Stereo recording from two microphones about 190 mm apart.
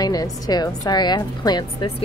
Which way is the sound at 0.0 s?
20° left (ahead or behind).